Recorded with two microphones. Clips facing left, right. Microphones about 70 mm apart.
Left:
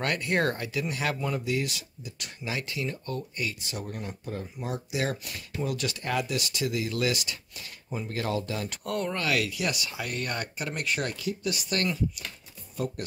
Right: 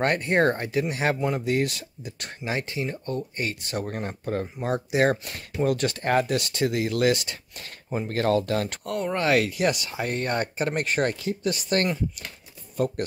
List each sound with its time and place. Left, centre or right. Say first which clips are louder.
0.0 s speech: right 5 dB; right
8.8 s speech: right 2 dB; centre
9.1 s speech: right 6 dB; right
12.7 s speech: right 7 dB; right